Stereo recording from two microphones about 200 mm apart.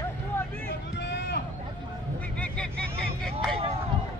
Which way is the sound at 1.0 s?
60° left (ahead or behind).